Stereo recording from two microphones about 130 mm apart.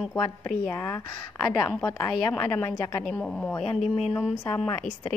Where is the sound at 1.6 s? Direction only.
20° left (ahead or behind).